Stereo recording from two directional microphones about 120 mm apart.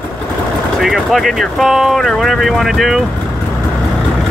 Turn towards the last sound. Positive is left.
turn(degrees=0)  # may be behind; listen again after turning